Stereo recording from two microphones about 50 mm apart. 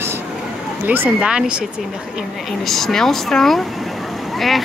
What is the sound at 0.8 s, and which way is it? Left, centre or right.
Speech, right.